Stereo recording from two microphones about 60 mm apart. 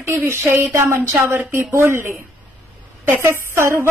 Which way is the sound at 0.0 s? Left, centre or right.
Right.